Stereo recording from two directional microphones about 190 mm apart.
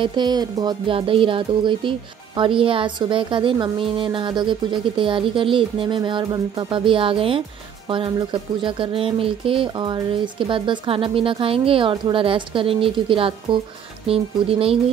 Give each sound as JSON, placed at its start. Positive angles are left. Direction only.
{"t": 0.0, "sound": "music", "side_deg": -25}